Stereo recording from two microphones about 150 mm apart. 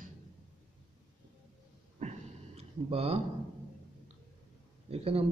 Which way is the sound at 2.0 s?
45° right (ahead or behind).